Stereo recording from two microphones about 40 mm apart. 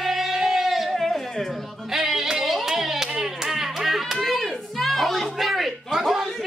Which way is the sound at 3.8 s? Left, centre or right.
Centre.